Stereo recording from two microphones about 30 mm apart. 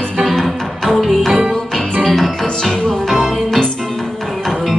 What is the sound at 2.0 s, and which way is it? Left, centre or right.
Music, centre.